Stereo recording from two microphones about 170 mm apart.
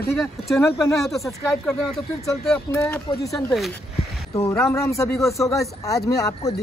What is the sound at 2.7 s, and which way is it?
Speech, 15° left (ahead or behind).